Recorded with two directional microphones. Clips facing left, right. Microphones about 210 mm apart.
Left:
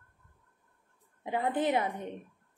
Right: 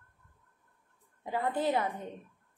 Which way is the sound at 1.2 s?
20° left (ahead or behind).